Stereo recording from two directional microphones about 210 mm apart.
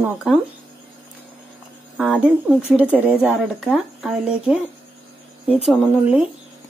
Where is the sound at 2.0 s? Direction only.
5° right (ahead or behind).